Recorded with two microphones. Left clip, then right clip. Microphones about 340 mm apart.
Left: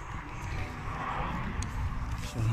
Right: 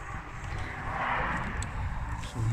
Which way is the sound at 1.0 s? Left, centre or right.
Right.